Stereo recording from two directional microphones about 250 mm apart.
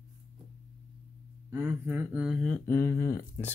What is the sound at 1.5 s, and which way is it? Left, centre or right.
Speech, centre.